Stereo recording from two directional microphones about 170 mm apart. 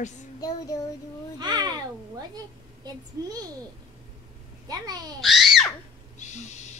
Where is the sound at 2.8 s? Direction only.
20° right (ahead or behind).